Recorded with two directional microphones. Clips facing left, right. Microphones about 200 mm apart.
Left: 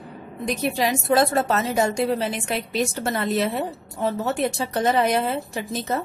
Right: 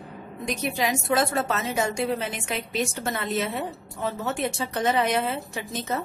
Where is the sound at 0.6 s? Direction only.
35° left (ahead or behind).